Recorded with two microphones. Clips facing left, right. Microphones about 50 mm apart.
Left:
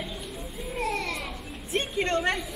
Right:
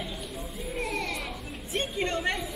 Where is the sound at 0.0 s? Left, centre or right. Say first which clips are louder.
Even; centre.